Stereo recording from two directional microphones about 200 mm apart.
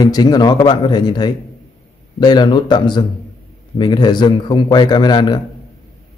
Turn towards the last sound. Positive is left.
turn(degrees=20)  # may be behind; listen again after turning